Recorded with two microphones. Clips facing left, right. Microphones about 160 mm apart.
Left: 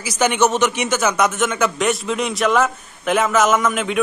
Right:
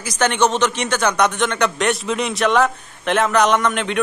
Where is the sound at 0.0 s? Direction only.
10° left (ahead or behind).